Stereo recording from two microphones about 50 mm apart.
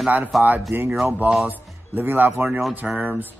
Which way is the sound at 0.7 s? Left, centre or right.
Right.